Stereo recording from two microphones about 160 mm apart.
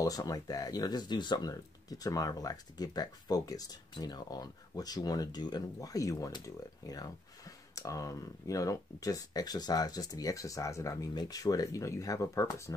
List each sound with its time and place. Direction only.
0.0 s speech: 25° left (ahead or behind)